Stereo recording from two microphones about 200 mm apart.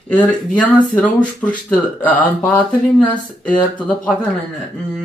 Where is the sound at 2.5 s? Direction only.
20° left (ahead or behind).